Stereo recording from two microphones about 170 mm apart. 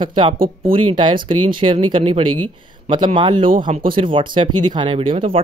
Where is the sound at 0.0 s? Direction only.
30° right (ahead or behind).